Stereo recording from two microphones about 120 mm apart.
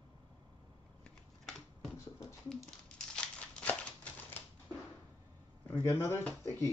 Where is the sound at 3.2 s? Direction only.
10° left (ahead or behind).